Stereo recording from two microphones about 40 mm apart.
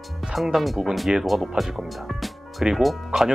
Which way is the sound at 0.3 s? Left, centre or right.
Centre.